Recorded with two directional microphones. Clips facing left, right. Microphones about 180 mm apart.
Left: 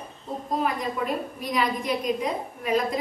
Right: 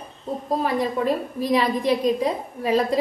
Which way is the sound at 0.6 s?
35° right (ahead or behind).